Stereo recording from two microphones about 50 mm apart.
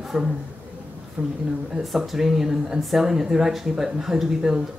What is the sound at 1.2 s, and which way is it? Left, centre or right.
Speech, right.